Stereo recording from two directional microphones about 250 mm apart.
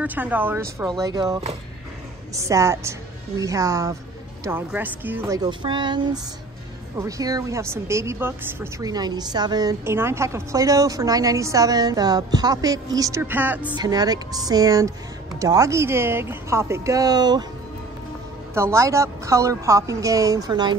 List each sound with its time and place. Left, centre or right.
0.0 s a woman's voice: centre
7.0 s a woman's voice: centre
18.5 s a woman's voice: centre